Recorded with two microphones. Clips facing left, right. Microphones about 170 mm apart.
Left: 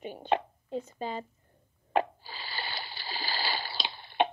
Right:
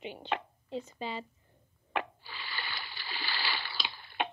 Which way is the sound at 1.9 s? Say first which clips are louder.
Left 7 dB; 35° left (ahead or behind).